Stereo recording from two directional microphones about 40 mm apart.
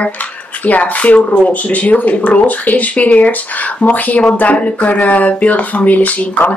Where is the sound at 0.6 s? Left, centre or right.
Left.